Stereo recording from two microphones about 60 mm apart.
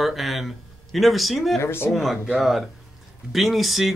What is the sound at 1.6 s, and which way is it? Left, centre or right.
Speech, left.